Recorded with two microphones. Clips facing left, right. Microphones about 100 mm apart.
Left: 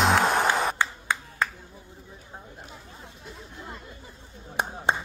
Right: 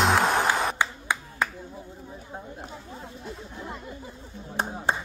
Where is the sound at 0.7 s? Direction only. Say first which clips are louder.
Even; 15° right (ahead or behind).